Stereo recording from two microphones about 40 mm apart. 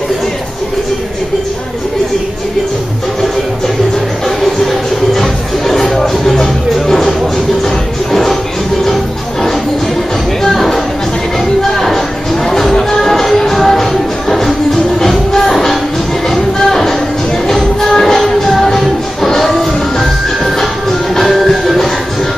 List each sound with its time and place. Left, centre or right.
5.1 s music: centre
10.4 s music: centre
15.0 s music: centre